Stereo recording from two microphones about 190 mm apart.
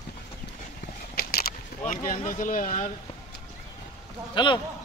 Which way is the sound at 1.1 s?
55° left (ahead or behind).